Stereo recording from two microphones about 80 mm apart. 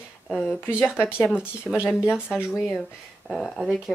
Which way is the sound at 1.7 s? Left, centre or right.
Centre.